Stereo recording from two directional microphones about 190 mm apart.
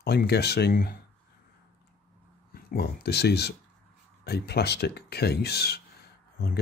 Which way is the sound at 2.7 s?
60° left (ahead or behind).